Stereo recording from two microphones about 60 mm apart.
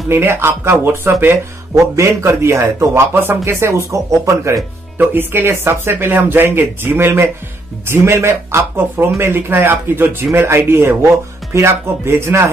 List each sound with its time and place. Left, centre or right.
0.1 s speech: right
2.0 s speech: right
4.9 s speech: right